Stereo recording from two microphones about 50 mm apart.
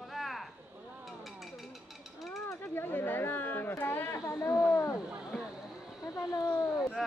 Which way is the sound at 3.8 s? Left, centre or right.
Left.